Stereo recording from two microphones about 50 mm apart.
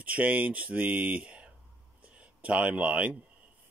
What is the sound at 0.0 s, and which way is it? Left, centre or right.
Speech, right.